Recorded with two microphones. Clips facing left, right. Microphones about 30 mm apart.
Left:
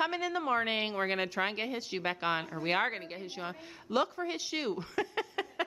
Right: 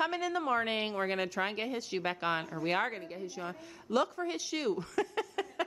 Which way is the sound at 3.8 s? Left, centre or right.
Centre.